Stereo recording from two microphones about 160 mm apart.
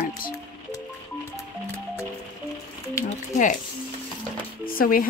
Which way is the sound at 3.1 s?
55° left (ahead or behind).